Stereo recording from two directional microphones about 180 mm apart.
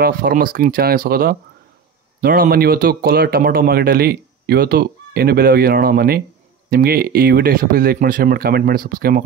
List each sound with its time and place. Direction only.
0.0 s speech: 55° right (ahead or behind)